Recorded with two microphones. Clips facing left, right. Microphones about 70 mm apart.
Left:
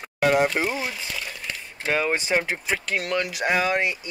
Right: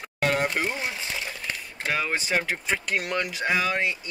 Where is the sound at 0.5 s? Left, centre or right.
Centre.